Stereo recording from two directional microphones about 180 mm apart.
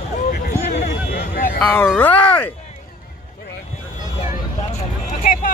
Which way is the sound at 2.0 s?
10° left (ahead or behind).